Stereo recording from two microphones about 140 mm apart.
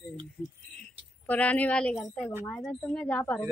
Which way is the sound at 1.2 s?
10° left (ahead or behind).